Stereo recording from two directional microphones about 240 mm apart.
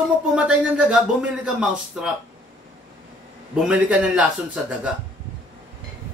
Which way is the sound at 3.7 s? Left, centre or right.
Centre.